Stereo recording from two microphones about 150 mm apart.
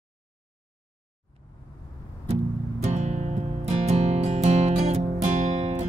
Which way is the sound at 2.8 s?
50° right (ahead or behind).